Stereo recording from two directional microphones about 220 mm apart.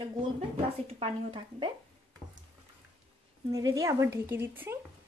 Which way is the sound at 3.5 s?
15° right (ahead or behind).